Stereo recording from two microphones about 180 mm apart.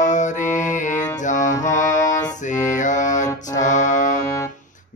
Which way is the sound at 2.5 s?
45° left (ahead or behind).